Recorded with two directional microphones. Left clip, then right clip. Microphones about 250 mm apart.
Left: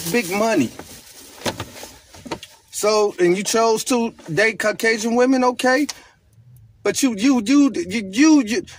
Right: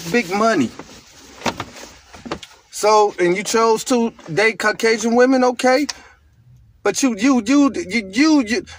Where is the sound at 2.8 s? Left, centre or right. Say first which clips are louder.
Right 3 dB; centre.